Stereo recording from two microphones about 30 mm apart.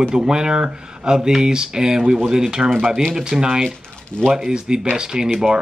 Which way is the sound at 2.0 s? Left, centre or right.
Right.